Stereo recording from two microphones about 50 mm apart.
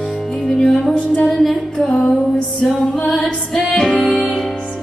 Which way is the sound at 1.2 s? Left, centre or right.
Centre.